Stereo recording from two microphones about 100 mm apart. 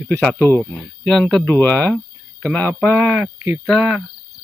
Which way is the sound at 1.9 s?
5° left (ahead or behind).